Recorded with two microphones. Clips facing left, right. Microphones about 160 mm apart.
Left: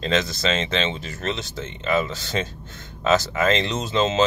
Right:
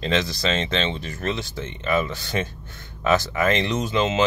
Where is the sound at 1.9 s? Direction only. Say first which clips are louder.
Even; 25° left (ahead or behind).